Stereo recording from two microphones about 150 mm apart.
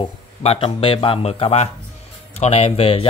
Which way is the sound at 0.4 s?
40° left (ahead or behind).